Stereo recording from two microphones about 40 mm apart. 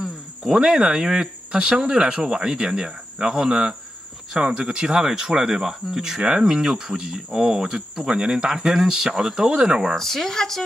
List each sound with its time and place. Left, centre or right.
0.4 s speech: centre
8.1 s speech: right
9.9 s speech: centre